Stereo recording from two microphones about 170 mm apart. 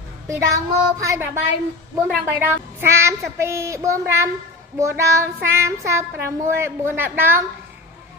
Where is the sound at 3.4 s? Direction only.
15° right (ahead or behind).